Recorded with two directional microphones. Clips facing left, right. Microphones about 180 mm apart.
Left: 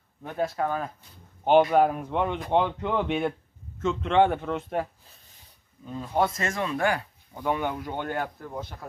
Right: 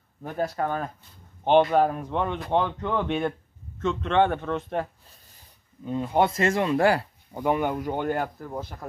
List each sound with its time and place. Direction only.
0.2 s speech: 5° right (ahead or behind)
5.9 s speech: 25° right (ahead or behind)
7.4 s speech: 5° right (ahead or behind)
7.7 s speech: 45° right (ahead or behind)
8.0 s speech: 5° right (ahead or behind)